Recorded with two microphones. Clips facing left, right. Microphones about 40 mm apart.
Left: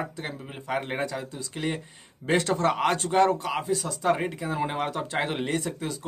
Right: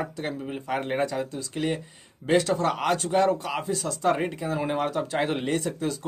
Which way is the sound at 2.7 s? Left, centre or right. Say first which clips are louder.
Even; centre.